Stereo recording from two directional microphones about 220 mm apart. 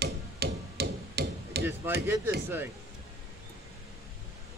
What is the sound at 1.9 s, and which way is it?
Speech, 10° right (ahead or behind).